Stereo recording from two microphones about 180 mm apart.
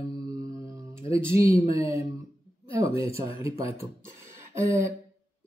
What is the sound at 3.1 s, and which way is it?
Speech, 15° right (ahead or behind).